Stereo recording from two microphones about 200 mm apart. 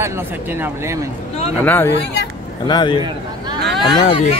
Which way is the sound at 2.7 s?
20° left (ahead or behind).